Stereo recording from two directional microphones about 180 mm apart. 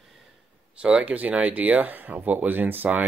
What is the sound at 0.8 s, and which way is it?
Speech, 5° right (ahead or behind).